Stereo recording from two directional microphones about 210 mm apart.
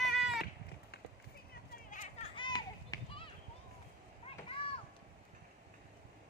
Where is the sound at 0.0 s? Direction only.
Centre (ahead or behind).